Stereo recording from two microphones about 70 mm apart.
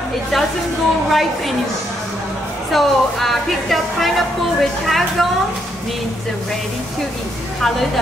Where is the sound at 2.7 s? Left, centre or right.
Centre.